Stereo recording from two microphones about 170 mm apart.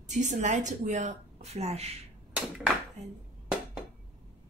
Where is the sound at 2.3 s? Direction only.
5° right (ahead or behind).